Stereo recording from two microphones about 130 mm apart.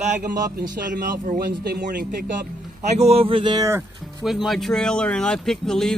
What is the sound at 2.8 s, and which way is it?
Speech, 55° right (ahead or behind).